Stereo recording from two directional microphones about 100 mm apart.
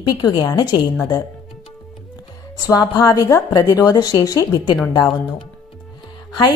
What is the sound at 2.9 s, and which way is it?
A woman's voice, 40° left (ahead or behind).